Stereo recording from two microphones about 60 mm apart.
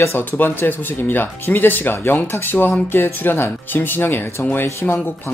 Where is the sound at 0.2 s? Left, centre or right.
Left.